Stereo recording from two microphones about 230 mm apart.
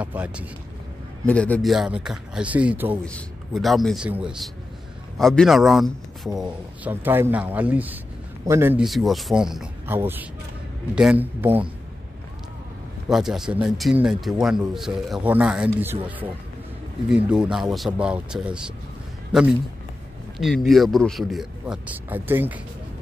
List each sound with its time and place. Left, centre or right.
0.0 s speech: centre
1.2 s a man's voice: centre
13.1 s speech: centre
20.3 s speech: centre